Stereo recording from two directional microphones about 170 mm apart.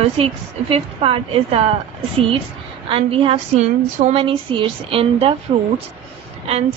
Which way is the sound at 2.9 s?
35° right (ahead or behind).